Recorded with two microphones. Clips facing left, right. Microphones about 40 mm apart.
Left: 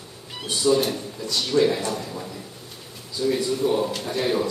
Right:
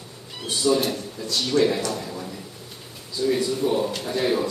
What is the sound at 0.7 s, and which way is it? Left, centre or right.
A man's voice, centre.